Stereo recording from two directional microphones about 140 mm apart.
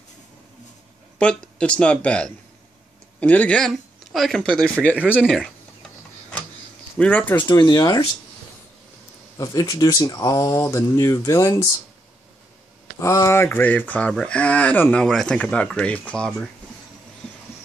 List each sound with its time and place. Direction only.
1.1 s speech: 10° left (ahead or behind)
5.2 s a sound: centre (ahead or behind)
7.0 s speech: 10° left (ahead or behind)
7.3 s speech: 35° left (ahead or behind)
9.4 s speech: 25° left (ahead or behind)
13.0 s speech: 20° left (ahead or behind); by 16.4 s 5° left (ahead or behind)